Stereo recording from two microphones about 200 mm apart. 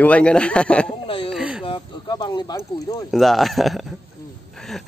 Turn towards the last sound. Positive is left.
turn(degrees=0)  # may be behind; listen again after turning